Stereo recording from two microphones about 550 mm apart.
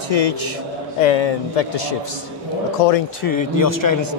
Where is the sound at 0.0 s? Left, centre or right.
Left.